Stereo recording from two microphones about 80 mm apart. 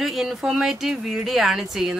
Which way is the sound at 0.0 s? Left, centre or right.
Centre.